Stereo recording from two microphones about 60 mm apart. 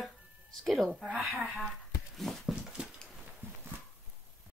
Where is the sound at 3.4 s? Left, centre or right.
Right.